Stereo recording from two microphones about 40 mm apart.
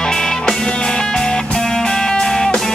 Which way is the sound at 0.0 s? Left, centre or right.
Centre.